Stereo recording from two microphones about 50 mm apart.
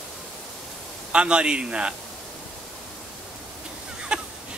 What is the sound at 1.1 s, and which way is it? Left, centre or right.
Speech, right.